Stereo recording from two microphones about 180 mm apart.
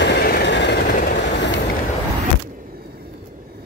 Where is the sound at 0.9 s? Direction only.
65° left (ahead or behind).